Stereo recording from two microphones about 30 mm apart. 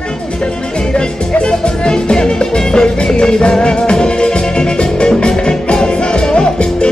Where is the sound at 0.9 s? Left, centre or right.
Left.